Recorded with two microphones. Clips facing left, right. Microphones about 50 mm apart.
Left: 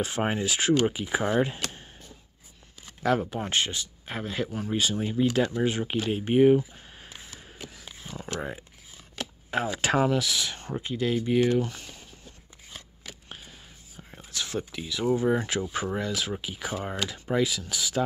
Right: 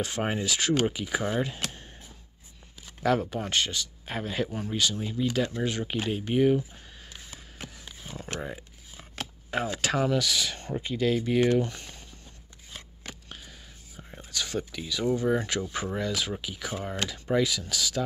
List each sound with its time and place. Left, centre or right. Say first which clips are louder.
0.0 s speech: left 2 dB; centre
3.0 s speech: even; centre
4.1 s speech: even; centre
4.6 s speech: left 2 dB; left
5.6 s speech: left 3 dB; centre
8.0 s a sound: left 1 dB; centre
8.4 s speech: left 2 dB; centre
9.8 s speech: left 5 dB; centre
10.0 s speech: left 1 dB; centre
14.1 s speech: even; centre